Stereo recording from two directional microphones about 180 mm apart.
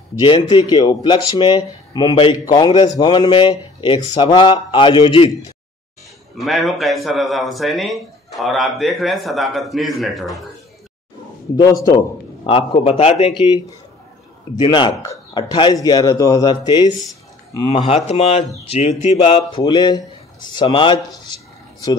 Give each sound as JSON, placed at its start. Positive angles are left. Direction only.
{"t": 0.1, "sound": "speech", "side_deg": 25}
{"t": 6.3, "sound": "a man's voice", "side_deg": 0}
{"t": 11.5, "sound": "speech", "side_deg": 20}
{"t": 19.1, "sound": "speech", "side_deg": 25}